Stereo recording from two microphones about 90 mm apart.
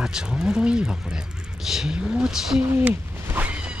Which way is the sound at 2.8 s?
15° right (ahead or behind).